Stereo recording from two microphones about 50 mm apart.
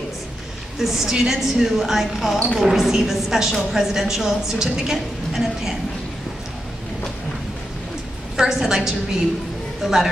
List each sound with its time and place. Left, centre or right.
0.7 s a woman's voice: centre
8.4 s a woman's voice: centre